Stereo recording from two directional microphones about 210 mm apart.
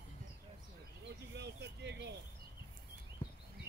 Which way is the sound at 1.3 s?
55° right (ahead or behind).